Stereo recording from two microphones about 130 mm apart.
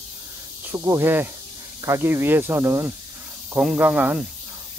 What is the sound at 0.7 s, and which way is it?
Speech, 20° right (ahead or behind).